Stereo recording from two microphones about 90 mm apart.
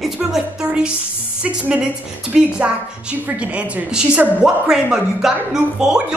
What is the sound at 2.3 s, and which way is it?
A woman's voice, 10° right (ahead or behind).